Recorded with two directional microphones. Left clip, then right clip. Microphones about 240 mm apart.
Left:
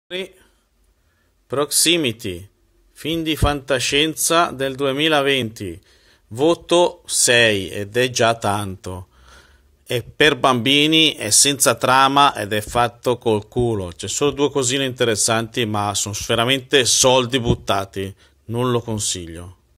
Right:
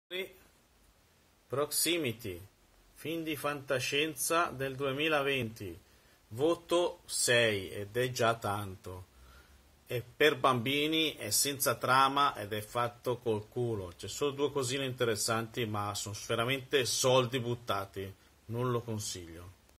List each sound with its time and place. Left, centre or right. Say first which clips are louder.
1.5 s a man's voice: left 14 dB; left